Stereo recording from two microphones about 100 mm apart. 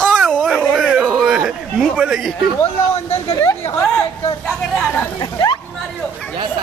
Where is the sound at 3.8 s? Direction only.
10° left (ahead or behind).